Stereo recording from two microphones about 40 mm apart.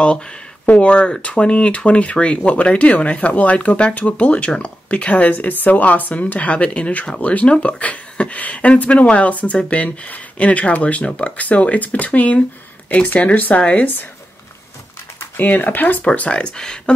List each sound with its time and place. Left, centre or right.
0.7 s speech: left
15.3 s speech: left
16.3 s speech: left